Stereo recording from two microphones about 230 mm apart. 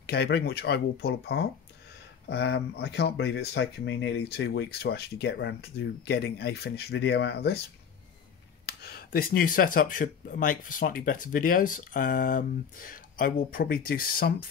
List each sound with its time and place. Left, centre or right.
0.0 s speech: left
8.6 s speech: left